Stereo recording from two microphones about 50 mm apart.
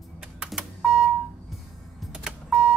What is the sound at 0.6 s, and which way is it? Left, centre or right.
Computer keyboard, centre.